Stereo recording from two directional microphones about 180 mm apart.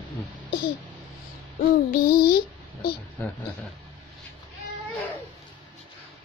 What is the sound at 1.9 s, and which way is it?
A child's voice, 55° left (ahead or behind).